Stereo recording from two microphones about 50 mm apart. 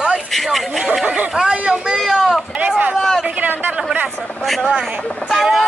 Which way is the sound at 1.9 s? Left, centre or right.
Centre.